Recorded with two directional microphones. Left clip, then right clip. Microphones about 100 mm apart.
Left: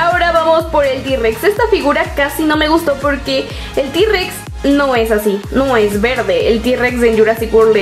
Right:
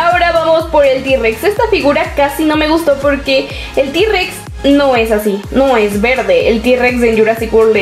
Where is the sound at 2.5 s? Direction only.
25° left (ahead or behind).